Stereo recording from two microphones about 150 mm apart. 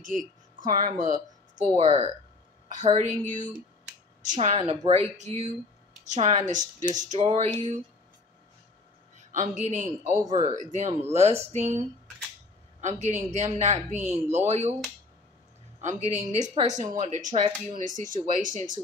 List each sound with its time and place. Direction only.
0.6 s speech: 60° right (ahead or behind)
1.5 s a woman's voice: 50° right (ahead or behind)
9.2 s a sound: 55° right (ahead or behind)
9.7 s speech: 55° right (ahead or behind)
10.3 s speech: 30° right (ahead or behind)
10.6 s a woman's voice: 50° right (ahead or behind)
12.8 s a woman's voice: 50° right (ahead or behind)
15.8 s a woman's voice: 50° right (ahead or behind)